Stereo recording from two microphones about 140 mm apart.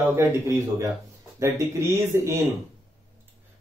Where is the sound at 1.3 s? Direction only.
20° right (ahead or behind).